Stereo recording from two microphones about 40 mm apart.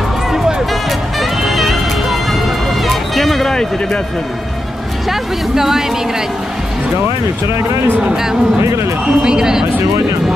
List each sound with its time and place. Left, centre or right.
1.4 s music: centre
5.5 s speech: centre
9.0 s speech: centre